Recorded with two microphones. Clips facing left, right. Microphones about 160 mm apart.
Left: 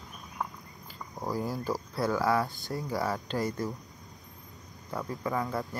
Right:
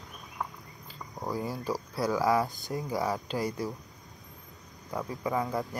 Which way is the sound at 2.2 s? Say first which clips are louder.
Right 1 dB; 15° right (ahead or behind).